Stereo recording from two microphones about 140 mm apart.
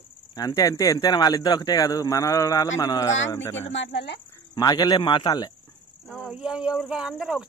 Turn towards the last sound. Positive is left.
turn(degrees=-5)  # may be behind; listen again after turning